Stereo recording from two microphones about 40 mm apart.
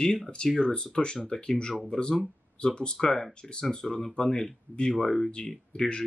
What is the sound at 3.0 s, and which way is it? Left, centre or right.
Speech, centre.